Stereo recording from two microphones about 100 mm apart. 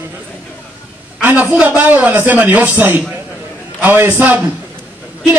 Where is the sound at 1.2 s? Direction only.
20° right (ahead or behind).